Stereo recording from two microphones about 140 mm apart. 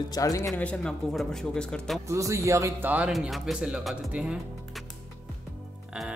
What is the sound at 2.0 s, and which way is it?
Speech, 20° right (ahead or behind).